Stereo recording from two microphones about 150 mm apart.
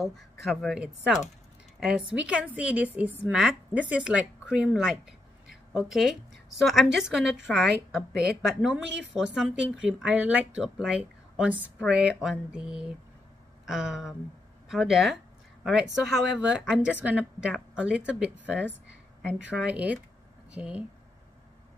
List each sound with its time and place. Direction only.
0.0 s a woman's voice: centre (ahead or behind)
8.1 s a woman's voice: 90° right
8.5 s a woman's voice: centre (ahead or behind)